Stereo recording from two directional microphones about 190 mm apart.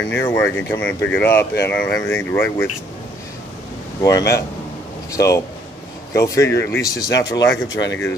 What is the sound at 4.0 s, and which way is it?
Speech, 15° left (ahead or behind).